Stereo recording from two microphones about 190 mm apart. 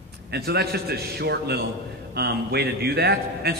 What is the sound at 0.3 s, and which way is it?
Speech, 60° right (ahead or behind).